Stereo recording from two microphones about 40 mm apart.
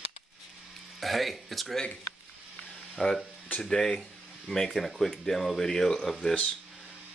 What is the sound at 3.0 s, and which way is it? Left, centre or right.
Speech, left.